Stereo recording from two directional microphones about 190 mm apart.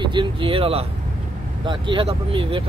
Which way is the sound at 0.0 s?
25° right (ahead or behind).